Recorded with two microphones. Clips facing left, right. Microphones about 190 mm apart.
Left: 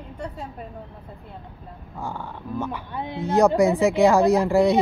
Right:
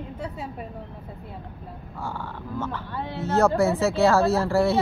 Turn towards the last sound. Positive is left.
turn(degrees=15)  # may be behind; listen again after turning